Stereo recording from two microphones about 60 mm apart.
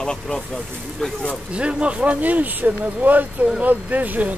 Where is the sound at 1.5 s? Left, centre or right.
Centre.